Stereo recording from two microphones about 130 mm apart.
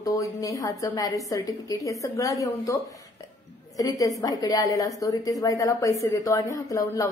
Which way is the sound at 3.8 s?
25° left (ahead or behind).